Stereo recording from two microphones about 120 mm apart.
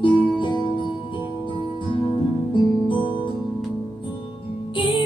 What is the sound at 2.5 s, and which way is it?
Music, 40° left (ahead or behind).